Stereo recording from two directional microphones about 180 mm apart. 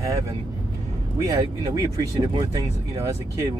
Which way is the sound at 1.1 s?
20° right (ahead or behind).